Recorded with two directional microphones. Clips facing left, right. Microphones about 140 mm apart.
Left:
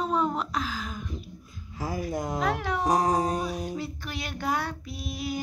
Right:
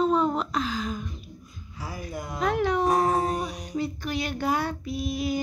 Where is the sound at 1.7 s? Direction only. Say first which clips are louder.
Left 6 dB; 45° left (ahead or behind).